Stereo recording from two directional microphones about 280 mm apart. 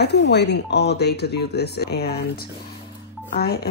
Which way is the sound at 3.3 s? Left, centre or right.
Left.